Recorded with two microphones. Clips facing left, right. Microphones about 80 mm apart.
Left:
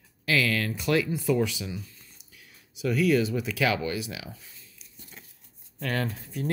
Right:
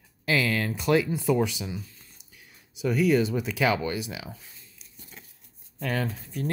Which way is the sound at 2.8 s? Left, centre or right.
Centre.